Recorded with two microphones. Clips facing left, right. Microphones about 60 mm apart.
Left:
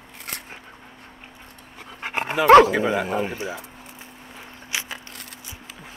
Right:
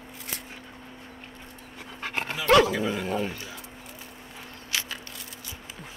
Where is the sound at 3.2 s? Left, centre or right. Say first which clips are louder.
Left 5 dB; left.